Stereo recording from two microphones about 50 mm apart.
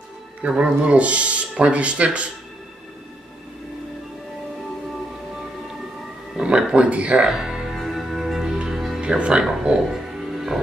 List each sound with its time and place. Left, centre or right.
0.4 s speech: right
6.3 s speech: right
7.3 s music: centre
9.0 s speech: centre